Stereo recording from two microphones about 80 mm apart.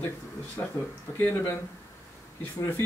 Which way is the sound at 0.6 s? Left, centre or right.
Left.